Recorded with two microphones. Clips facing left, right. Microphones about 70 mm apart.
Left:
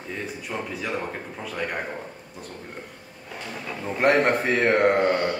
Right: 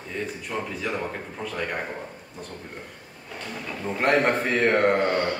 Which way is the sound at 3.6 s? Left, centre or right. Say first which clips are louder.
Left 3 dB; centre.